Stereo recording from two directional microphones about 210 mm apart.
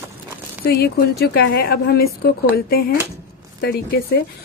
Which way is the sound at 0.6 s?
50° left (ahead or behind).